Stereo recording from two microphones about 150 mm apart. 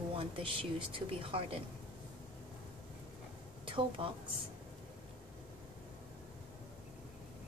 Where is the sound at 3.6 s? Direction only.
35° right (ahead or behind).